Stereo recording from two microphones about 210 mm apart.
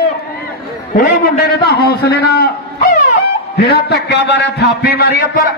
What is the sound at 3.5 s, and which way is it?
A man's voice, 50° left (ahead or behind).